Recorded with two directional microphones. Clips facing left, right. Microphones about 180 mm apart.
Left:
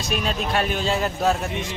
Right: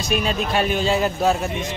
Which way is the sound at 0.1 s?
5° right (ahead or behind).